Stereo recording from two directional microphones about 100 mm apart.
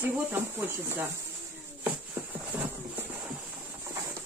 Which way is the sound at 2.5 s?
15° right (ahead or behind).